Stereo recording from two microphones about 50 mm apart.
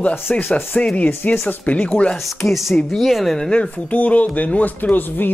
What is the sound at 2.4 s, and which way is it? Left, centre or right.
Speech, centre.